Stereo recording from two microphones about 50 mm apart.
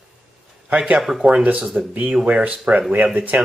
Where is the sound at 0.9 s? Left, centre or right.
Centre.